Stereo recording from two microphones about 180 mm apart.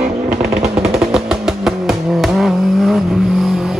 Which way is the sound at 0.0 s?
40° right (ahead or behind).